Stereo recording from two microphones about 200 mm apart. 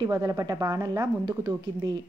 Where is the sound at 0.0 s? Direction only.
15° right (ahead or behind).